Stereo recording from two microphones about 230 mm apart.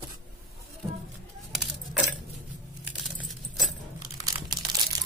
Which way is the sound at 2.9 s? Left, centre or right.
Centre.